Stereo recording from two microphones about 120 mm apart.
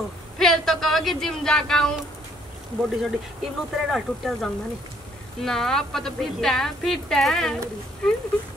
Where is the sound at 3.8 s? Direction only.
Centre (ahead or behind).